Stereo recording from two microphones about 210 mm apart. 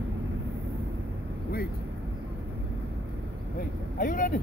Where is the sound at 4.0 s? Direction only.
40° left (ahead or behind).